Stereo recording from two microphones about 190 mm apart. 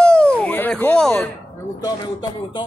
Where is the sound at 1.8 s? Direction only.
20° left (ahead or behind).